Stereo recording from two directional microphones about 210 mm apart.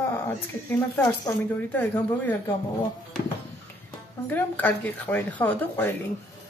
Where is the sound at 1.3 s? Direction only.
10° left (ahead or behind).